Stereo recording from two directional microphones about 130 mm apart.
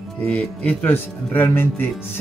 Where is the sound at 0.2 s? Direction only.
10° left (ahead or behind).